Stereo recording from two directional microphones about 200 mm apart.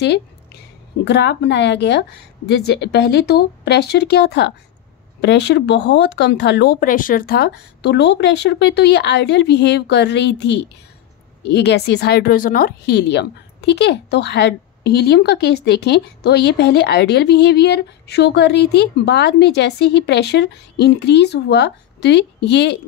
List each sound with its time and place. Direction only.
0.0 s a woman's voice: 55° left (ahead or behind)